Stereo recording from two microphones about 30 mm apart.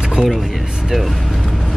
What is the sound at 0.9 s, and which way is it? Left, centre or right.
Speech, centre.